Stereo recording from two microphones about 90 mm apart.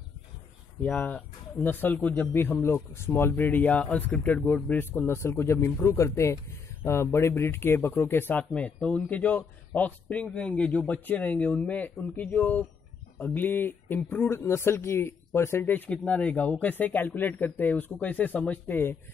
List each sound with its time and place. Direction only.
0.7 s speech: 15° left (ahead or behind)
8.4 s a man's voice: 10° left (ahead or behind)
15.9 s speech: 10° left (ahead or behind)